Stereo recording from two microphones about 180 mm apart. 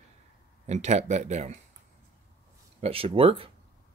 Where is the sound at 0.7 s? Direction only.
40° right (ahead or behind).